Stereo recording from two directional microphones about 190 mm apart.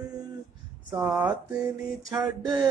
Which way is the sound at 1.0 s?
5° right (ahead or behind).